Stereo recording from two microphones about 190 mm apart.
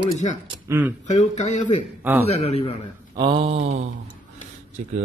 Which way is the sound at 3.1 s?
25° right (ahead or behind).